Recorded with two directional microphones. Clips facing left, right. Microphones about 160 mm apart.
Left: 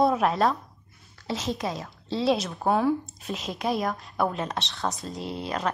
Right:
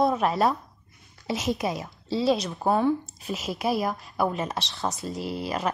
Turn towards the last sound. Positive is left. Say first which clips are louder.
# right 1 dB
turn(degrees=-5)  # may be behind; listen again after turning